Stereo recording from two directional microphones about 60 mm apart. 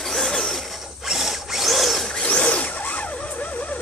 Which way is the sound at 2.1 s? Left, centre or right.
Centre.